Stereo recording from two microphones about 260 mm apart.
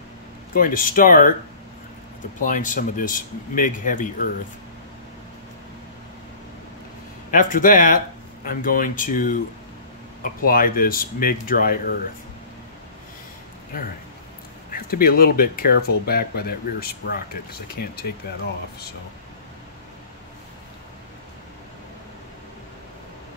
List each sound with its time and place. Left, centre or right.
0.6 s speech: left
2.4 s speech: left
7.2 s speech: left
14.7 s speech: left